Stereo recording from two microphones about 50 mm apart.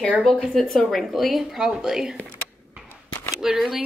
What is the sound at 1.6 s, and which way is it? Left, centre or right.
Speech, centre.